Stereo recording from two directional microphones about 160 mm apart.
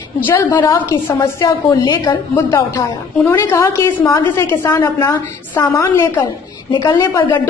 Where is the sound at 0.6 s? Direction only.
15° left (ahead or behind).